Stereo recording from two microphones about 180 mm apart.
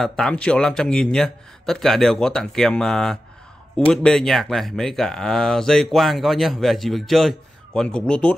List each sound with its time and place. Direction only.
0.0 s speech: 5° left (ahead or behind)